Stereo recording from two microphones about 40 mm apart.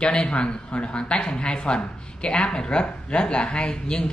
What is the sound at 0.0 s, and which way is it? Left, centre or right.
Speech, left.